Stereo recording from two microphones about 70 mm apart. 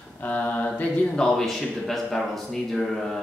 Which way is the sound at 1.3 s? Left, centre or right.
Centre.